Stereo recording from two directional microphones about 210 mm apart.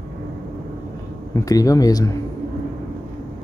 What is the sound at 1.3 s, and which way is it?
Speech, 15° left (ahead or behind).